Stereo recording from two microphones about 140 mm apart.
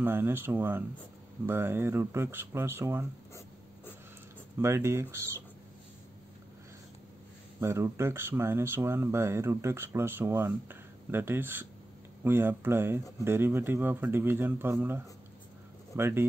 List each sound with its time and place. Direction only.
0.0 s speech: 15° right (ahead or behind)
4.6 s speech: 20° right (ahead or behind)
7.6 s speech: 20° right (ahead or behind)